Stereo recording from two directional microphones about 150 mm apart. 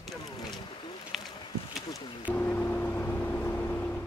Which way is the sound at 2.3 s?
10° left (ahead or behind).